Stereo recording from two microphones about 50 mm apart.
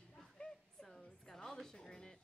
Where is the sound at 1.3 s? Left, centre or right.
Centre.